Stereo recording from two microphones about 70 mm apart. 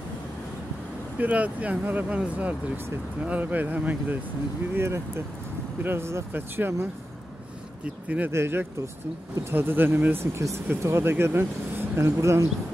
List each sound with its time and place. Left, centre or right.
1.1 s speech: right
4.7 s speech: right
7.8 s speech: centre
8.3 s speech: right
10.3 s speech: right
12.2 s speech: right